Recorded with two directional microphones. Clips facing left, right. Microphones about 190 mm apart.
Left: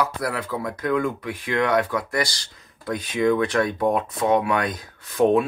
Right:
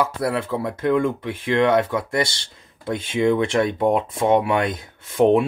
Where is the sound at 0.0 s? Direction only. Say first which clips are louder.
Right 3 dB; 25° right (ahead or behind).